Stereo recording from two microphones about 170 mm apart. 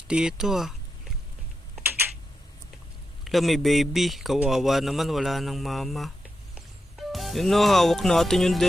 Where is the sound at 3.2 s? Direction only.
Centre (ahead or behind).